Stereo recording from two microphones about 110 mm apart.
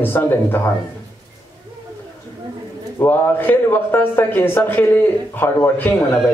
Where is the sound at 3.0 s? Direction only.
15° left (ahead or behind).